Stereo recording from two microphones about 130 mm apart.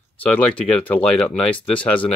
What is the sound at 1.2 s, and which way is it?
Speech, 10° left (ahead or behind).